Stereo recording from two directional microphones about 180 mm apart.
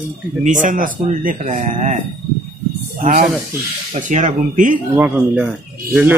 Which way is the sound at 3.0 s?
45° right (ahead or behind).